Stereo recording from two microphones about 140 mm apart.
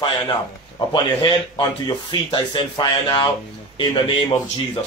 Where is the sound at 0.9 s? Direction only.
35° left (ahead or behind).